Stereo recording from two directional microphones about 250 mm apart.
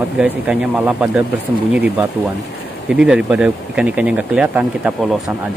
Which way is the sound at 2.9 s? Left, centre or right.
Centre.